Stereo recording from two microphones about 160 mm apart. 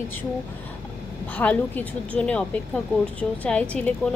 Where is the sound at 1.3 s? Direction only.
10° left (ahead or behind).